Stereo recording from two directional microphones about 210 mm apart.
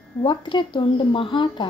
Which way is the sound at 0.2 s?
20° left (ahead or behind).